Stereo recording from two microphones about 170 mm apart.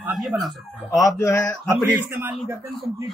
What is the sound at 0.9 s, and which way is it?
Speech, 20° left (ahead or behind).